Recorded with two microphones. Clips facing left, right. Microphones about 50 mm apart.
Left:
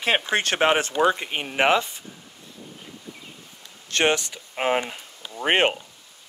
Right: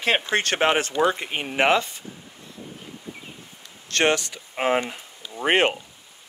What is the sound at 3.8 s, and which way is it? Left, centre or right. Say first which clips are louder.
Speech: right 1 dB; centre.